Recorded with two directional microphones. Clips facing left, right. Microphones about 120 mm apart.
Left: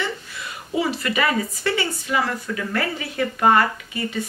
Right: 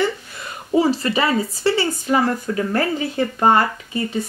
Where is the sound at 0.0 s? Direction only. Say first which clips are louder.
Right 6 dB; 40° right (ahead or behind).